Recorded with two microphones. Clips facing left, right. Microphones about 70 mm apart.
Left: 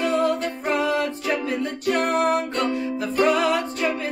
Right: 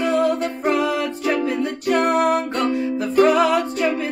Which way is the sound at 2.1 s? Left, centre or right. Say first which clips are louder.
Right 3 dB; centre.